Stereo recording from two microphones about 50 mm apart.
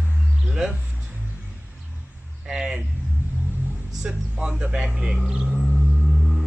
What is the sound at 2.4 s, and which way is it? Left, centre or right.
Vehicle, centre.